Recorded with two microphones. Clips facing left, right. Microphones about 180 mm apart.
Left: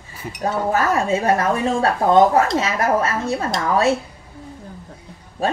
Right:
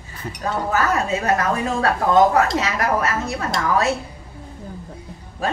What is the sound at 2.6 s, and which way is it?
Speech, 30° left (ahead or behind).